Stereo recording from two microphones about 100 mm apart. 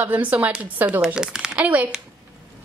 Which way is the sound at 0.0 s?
15° right (ahead or behind).